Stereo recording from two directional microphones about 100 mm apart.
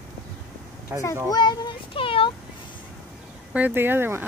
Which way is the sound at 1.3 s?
45° left (ahead or behind).